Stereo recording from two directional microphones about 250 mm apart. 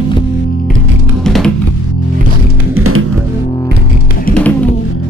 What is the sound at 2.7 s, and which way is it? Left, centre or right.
Music, right.